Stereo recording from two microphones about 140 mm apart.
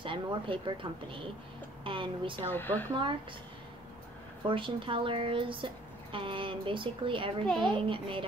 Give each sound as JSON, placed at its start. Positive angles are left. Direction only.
{"t": 0.0, "sound": "a woman's voice", "side_deg": -40}
{"t": 2.5, "sound": "speech", "side_deg": 15}
{"t": 2.9, "sound": "a woman's voice", "side_deg": -35}
{"t": 4.5, "sound": "a woman's voice", "side_deg": -35}